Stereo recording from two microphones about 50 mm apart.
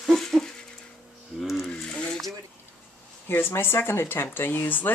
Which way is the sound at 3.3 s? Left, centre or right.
Left.